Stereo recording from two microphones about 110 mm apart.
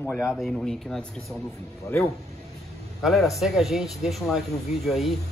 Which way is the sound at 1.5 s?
25° left (ahead or behind).